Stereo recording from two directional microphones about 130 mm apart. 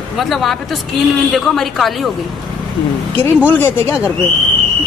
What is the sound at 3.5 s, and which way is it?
Speech, 15° left (ahead or behind).